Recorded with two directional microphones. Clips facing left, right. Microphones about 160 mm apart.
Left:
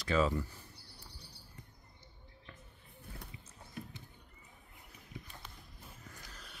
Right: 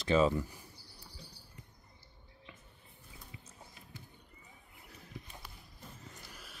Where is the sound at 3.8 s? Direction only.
60° left (ahead or behind).